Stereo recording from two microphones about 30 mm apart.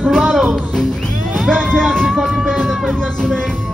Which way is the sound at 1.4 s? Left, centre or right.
Left.